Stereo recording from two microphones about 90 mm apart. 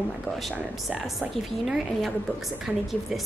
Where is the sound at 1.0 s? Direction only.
Centre (ahead or behind).